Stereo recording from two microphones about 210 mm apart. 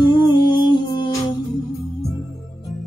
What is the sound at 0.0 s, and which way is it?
Humming, 20° left (ahead or behind).